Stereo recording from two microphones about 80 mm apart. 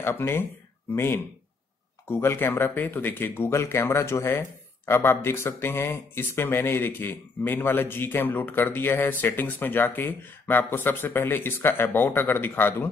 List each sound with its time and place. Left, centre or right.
0.0 s speech: left